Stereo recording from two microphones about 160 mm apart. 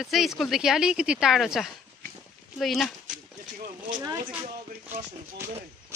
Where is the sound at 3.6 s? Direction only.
60° right (ahead or behind).